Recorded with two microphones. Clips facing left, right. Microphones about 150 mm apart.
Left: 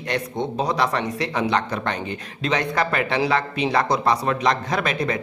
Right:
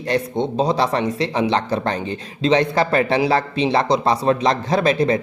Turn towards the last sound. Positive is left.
turn(degrees=-30)  # may be behind; listen again after turning